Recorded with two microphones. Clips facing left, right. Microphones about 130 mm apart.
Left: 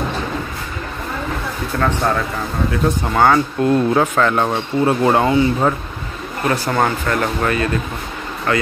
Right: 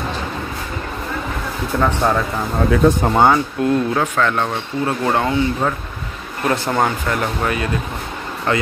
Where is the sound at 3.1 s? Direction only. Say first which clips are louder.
Left 3 dB; 20° right (ahead or behind).